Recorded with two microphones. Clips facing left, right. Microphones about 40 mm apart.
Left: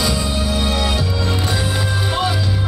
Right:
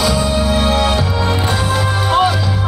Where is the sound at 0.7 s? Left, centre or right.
Right.